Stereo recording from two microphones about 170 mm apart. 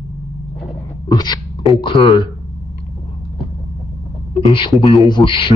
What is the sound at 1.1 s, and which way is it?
A man's voice, 25° left (ahead or behind).